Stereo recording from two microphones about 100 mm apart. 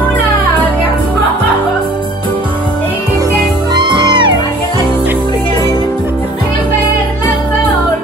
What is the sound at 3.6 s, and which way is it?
Music, 50° right (ahead or behind).